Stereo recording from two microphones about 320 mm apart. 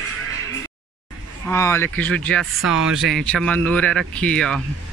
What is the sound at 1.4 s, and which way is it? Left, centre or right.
Speech, centre.